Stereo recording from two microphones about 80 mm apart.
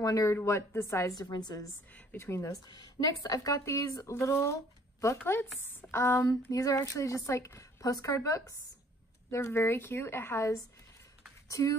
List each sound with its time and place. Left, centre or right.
0.0 s speech: left
0.4 s a woman's voice: left
1.1 s speech: left
2.1 s a woman's voice: left
2.6 s speech: left
5.2 s a woman's voice: left
6.2 s a woman's voice: left
11.4 s speech: left